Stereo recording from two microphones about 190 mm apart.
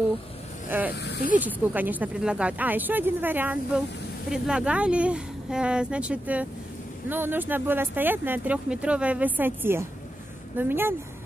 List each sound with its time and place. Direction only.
0.7 s speech: 10° right (ahead or behind)
1.0 s speech: 60° left (ahead or behind)
1.3 s a woman's voice: 10° right (ahead or behind)